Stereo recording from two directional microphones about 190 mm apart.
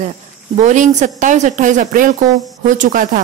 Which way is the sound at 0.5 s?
40° right (ahead or behind).